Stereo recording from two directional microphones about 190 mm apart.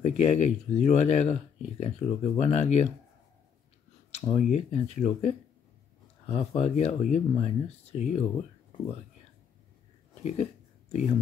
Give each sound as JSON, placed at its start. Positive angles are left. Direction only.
{"t": 0.0, "sound": "speech", "side_deg": 35}
{"t": 4.5, "sound": "speech", "side_deg": 35}
{"t": 10.2, "sound": "a sound", "side_deg": 35}